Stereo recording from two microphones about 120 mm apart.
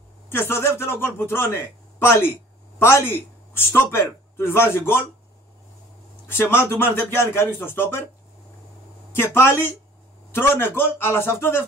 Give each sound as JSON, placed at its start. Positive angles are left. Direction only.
{"t": 0.3, "sound": "speech", "side_deg": 20}
{"t": 6.2, "sound": "speech", "side_deg": 20}
{"t": 9.1, "sound": "speech", "side_deg": 20}